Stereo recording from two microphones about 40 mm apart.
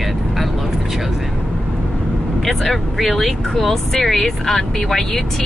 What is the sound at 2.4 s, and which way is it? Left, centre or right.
Speech, centre.